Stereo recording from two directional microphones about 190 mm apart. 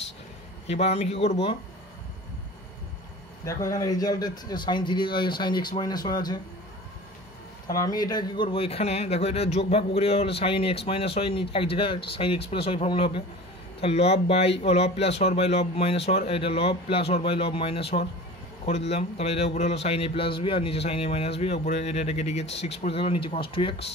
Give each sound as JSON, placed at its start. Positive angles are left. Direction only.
{"t": 0.7, "sound": "a man's voice", "side_deg": 35}
{"t": 3.4, "sound": "speech", "side_deg": 15}
{"t": 7.6, "sound": "a man's voice", "side_deg": 20}
{"t": 18.9, "sound": "a man's voice", "side_deg": 35}